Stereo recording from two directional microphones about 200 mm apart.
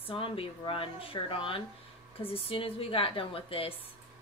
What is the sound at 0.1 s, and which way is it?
Speech, 25° left (ahead or behind).